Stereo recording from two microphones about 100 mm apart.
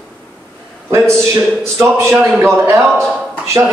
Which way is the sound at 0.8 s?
30° right (ahead or behind).